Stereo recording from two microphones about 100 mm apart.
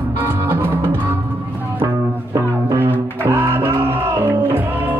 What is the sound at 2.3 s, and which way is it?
Music, 30° right (ahead or behind).